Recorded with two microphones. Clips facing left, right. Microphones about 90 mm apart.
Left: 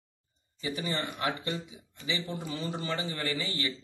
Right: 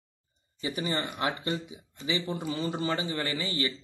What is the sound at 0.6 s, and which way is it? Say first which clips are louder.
Speech: right 2 dB; 20° right (ahead or behind).